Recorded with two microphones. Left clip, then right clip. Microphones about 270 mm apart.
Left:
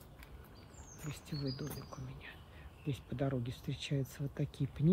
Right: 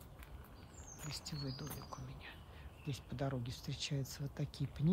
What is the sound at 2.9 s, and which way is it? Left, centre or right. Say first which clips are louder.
Speech: left 4 dB; centre.